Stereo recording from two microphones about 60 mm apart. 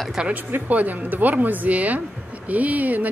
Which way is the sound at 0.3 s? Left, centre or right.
Right.